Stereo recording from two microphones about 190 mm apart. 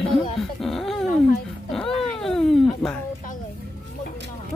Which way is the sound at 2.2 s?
Centre (ahead or behind).